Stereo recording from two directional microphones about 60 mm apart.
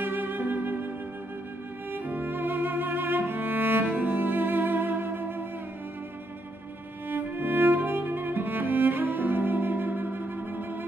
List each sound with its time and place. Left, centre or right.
0.0 s music: right
1.9 s music: right
7.1 s music: right